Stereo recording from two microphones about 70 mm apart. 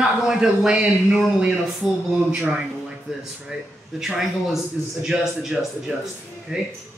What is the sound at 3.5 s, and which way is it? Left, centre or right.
Speech, centre.